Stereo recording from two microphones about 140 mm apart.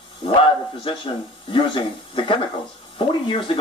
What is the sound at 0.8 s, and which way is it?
Speech, 40° left (ahead or behind).